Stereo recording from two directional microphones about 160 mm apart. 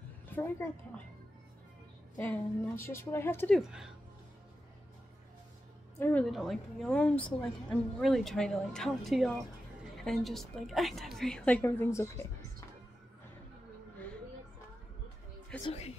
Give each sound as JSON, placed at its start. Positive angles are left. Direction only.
{"t": 0.3, "sound": "a woman's voice", "side_deg": 10}
{"t": 2.1, "sound": "a woman's voice", "side_deg": 10}
{"t": 3.5, "sound": "a woman's voice", "side_deg": -5}
{"t": 5.9, "sound": "a woman's voice", "side_deg": 10}
{"t": 6.2, "sound": "a woman's voice", "side_deg": 0}
{"t": 15.6, "sound": "speech", "side_deg": 40}